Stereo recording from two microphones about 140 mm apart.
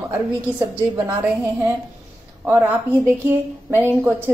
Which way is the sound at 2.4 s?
15° right (ahead or behind).